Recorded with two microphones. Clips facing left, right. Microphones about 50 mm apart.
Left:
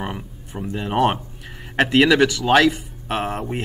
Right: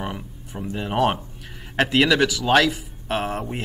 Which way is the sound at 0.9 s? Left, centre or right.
Left.